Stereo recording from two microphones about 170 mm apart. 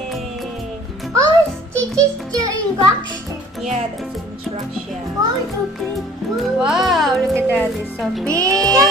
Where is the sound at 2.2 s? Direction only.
20° right (ahead or behind).